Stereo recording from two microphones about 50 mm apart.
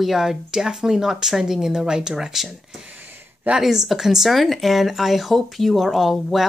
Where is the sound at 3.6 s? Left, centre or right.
Centre.